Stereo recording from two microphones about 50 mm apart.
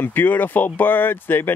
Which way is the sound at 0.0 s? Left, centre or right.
Left.